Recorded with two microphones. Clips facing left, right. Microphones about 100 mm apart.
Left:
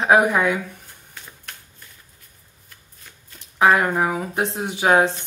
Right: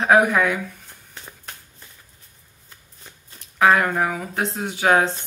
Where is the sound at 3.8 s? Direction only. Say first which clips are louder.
Left 1 dB; 15° left (ahead or behind).